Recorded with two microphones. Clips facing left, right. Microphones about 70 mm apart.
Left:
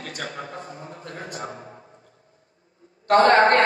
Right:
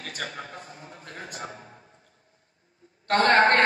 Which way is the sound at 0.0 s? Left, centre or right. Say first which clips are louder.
Left 3 dB; left.